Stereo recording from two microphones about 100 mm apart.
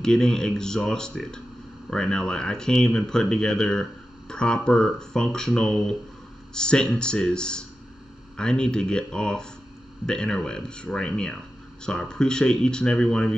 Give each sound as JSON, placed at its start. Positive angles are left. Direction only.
{"t": 0.0, "sound": "speech", "side_deg": 5}